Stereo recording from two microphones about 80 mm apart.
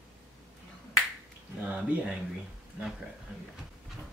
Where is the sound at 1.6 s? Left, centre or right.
Centre.